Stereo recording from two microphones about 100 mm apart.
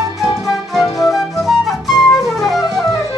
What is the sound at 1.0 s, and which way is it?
Flute, centre (ahead or behind).